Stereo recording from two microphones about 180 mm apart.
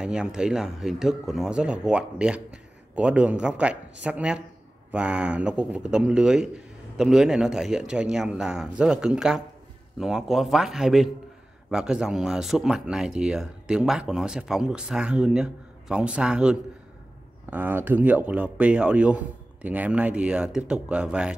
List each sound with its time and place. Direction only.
0.0 s speech: 5° right (ahead or behind)